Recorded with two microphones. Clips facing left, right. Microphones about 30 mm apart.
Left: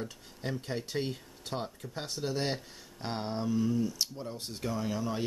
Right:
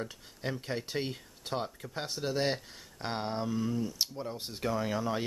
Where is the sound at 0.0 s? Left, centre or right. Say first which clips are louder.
Right 1 dB; centre.